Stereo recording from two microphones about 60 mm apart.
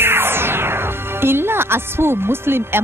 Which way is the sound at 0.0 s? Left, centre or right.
Right.